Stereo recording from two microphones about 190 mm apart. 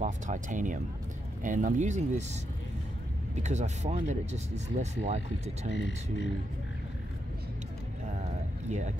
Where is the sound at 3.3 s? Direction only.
35° right (ahead or behind).